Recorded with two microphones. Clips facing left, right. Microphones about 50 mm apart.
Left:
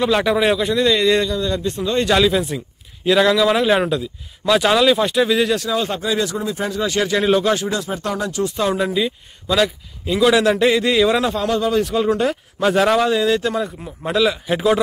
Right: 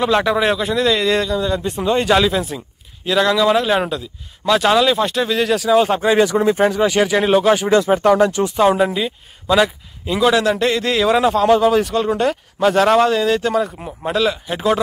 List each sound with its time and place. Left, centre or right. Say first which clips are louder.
0.0 s a man's voice: right 1 dB; centre
5.7 s speech: right 7 dB; right
6.0 s speech: right 7 dB; right
7.0 s speech: even; centre
7.7 s speech: right 10 dB; right
8.6 s a man's voice: right 3 dB; centre
10.4 s a man's voice: left 2 dB; centre